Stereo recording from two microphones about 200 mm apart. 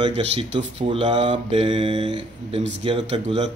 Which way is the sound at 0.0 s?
30° right (ahead or behind).